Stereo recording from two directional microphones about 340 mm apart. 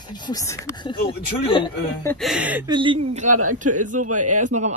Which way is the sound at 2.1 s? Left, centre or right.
Centre.